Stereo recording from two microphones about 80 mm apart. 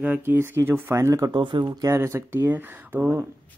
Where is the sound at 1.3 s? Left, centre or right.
Right.